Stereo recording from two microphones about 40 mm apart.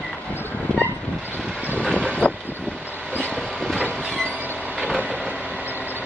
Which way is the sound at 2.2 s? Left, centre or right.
Left.